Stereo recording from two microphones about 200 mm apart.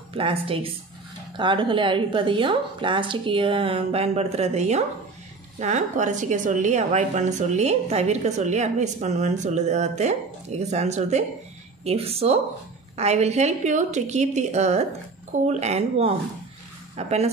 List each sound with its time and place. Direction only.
0.1 s a woman's voice: 25° right (ahead or behind)